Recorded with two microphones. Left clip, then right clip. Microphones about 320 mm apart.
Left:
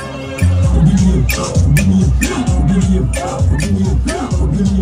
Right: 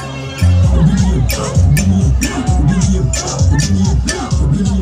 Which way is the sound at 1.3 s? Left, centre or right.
Left.